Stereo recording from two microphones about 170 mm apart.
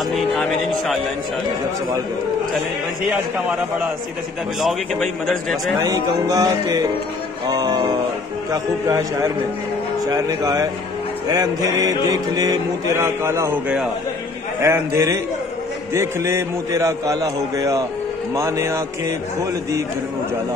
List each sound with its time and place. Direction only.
0.1 s music: centre (ahead or behind)
4.6 s a man's voice: centre (ahead or behind)
5.9 s mantra: 20° right (ahead or behind)
14.6 s music: 15° right (ahead or behind)
15.9 s mantra: 15° right (ahead or behind)
18.3 s music: 15° right (ahead or behind)